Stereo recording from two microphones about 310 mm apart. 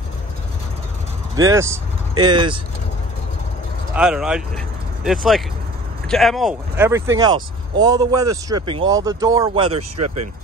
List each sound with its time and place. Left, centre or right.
1.3 s speech: centre
3.9 s speech: centre
9.8 s speech: right